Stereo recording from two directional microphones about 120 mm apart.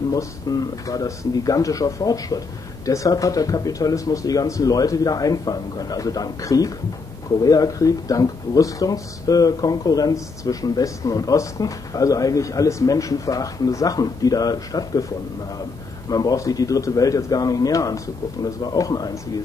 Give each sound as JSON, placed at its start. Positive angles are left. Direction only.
{"t": 0.1, "sound": "speech", "side_deg": 30}
{"t": 16.1, "sound": "speech", "side_deg": 30}